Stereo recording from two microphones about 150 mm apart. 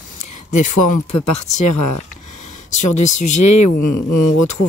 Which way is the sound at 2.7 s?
55° left (ahead or behind).